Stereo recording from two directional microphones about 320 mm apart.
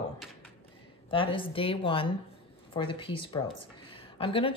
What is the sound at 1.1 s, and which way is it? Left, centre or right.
Speech, centre.